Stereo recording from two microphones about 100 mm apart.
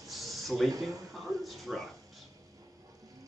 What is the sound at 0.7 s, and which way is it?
Speech, 35° right (ahead or behind).